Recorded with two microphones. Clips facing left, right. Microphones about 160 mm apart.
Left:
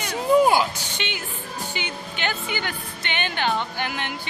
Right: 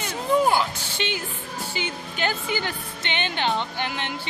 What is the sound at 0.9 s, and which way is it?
Speech, 35° right (ahead or behind).